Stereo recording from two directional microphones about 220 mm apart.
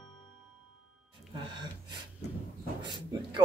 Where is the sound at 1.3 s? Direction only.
20° right (ahead or behind).